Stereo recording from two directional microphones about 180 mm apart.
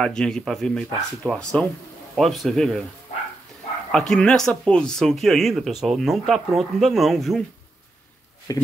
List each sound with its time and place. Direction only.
0.0 s speech: 5° left (ahead or behind)
3.9 s speech: 5° left (ahead or behind)
8.5 s speech: 20° left (ahead or behind)